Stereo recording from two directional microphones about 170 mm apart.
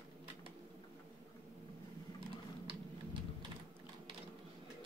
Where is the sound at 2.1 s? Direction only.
30° right (ahead or behind).